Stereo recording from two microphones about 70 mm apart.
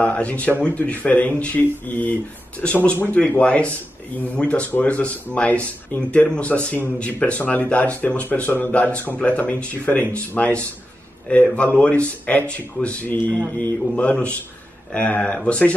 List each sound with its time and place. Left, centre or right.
0.0 s speech: centre